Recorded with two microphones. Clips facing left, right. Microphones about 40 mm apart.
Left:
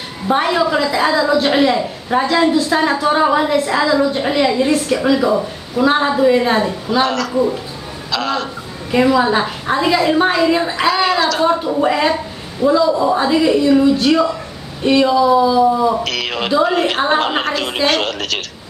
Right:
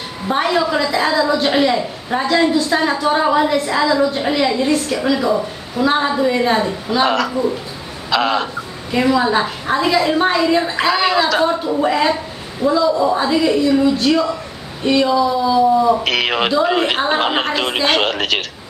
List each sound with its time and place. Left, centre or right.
0.3 s a woman's voice: centre
7.1 s speech: centre
8.9 s a woman's voice: centre
10.9 s a woman's voice: centre
11.4 s a woman's voice: centre
16.0 s speech: right
16.6 s a woman's voice: centre
17.8 s speech: right